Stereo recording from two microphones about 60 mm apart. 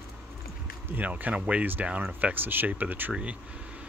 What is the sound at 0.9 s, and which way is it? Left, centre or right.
Speech, right.